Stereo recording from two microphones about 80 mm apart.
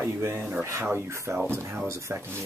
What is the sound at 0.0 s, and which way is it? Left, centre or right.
Speech, right.